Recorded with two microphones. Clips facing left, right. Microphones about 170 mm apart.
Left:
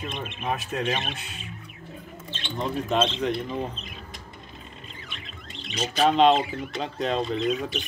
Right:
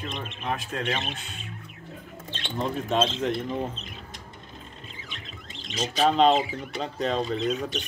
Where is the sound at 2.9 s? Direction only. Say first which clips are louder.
Left 1 dB; centre (ahead or behind).